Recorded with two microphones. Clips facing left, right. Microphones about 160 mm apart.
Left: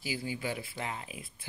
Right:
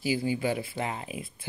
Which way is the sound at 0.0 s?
20° right (ahead or behind).